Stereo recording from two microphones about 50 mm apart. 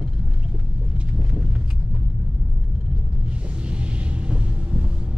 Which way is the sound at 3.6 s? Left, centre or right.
Right.